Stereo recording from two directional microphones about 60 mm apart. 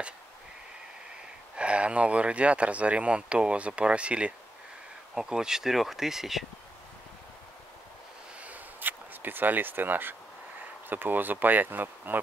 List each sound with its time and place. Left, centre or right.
1.6 s speech: centre
8.4 s a sound: right
10.9 s speech: right